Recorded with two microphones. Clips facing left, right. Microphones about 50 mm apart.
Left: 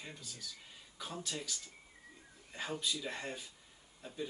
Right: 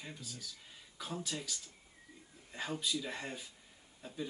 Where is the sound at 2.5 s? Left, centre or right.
Centre.